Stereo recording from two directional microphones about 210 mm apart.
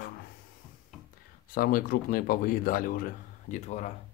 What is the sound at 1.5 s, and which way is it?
Speech, 45° left (ahead or behind).